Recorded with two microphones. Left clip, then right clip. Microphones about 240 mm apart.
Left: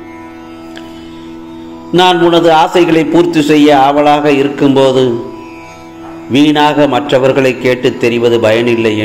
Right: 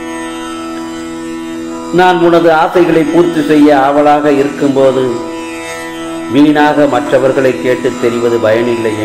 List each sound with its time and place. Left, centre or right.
2.0 s a man's voice: left
6.3 s a man's voice: left